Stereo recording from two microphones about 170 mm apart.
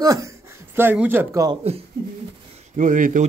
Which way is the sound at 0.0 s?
20° right (ahead or behind).